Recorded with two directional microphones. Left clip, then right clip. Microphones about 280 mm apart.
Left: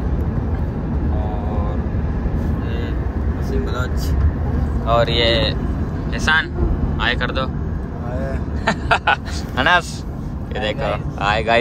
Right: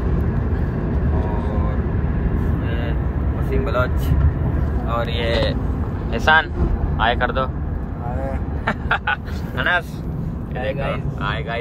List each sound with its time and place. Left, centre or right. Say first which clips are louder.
4.8 s speech: left 8 dB; left
5.2 s speech: left 4 dB; centre
8.6 s speech: left 4 dB; centre